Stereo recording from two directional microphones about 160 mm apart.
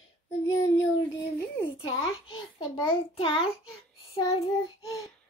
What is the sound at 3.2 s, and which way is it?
Speech, 35° left (ahead or behind).